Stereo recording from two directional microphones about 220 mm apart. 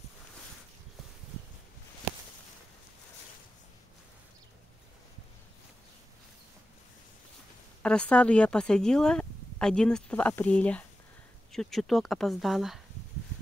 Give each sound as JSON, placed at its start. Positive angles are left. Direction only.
{"t": 7.8, "sound": "speech", "side_deg": 5}